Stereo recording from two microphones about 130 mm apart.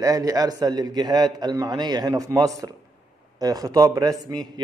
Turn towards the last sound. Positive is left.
turn(degrees=-30)  # may be behind; listen again after turning